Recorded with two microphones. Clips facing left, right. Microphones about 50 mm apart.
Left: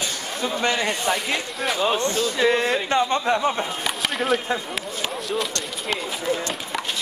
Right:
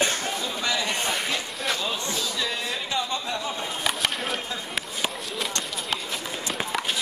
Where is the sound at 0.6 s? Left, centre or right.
Left.